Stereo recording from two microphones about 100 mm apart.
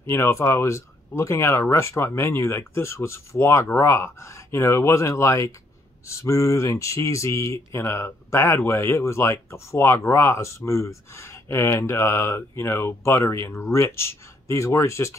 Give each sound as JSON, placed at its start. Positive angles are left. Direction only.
{"t": 0.0, "sound": "speech", "side_deg": 25}